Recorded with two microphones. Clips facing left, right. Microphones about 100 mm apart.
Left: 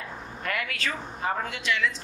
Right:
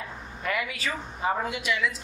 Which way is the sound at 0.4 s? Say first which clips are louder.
Right 1 dB; 10° right (ahead or behind).